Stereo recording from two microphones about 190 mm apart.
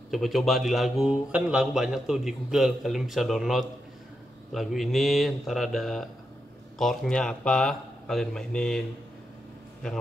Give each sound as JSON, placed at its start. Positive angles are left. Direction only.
{"t": 0.1, "sound": "a man's voice", "side_deg": 0}